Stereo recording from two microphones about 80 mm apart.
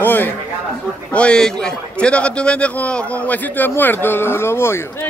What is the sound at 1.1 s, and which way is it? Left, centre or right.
A man's voice, centre.